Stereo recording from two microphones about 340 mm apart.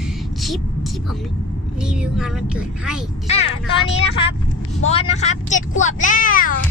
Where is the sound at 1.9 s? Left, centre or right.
Centre.